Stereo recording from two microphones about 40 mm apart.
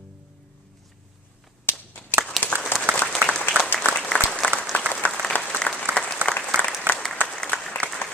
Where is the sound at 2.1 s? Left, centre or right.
Left.